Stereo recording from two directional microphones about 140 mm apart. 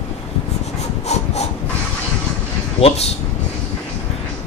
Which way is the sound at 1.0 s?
50° left (ahead or behind).